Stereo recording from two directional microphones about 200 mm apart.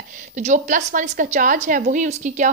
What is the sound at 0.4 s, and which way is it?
A woman's voice, 35° right (ahead or behind).